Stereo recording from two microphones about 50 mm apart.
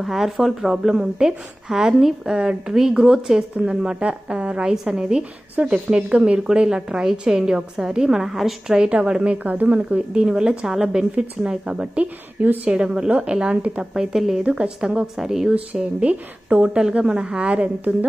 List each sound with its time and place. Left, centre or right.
0.0 s a woman's voice: centre
8.7 s a woman's voice: right
9.8 s a woman's voice: right
12.7 s a woman's voice: centre
13.9 s a woman's voice: centre
15.5 s a woman's voice: right